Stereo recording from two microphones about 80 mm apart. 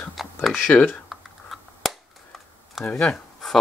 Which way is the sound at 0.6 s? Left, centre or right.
Centre.